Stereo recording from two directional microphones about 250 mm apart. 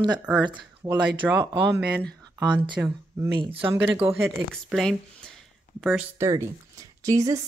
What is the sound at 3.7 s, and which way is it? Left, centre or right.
Speech, centre.